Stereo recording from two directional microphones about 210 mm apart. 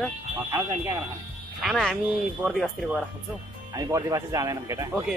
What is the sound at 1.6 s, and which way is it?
Speech, centre (ahead or behind).